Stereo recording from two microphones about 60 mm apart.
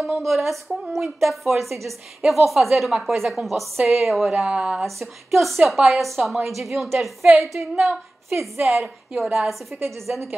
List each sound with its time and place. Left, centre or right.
0.0 s a woman's voice: centre
4.5 s speech: centre
5.0 s a woman's voice: centre
9.7 s speech: right
10.0 s a woman's voice: centre